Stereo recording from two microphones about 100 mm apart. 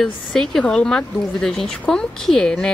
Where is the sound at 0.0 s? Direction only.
5° left (ahead or behind).